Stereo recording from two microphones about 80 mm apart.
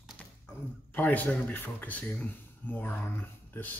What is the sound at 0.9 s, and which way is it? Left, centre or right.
Speech, left.